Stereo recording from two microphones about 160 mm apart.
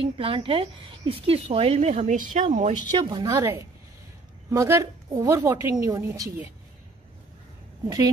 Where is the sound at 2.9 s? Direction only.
25° right (ahead or behind).